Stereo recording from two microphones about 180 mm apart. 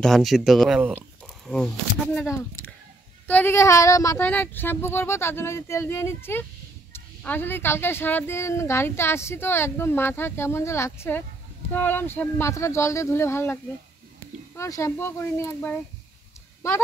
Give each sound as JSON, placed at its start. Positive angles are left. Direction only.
{"t": 0.0, "sound": "speech", "side_deg": 0}
{"t": 2.2, "sound": "speech", "side_deg": 15}
{"t": 14.6, "sound": "speech", "side_deg": 15}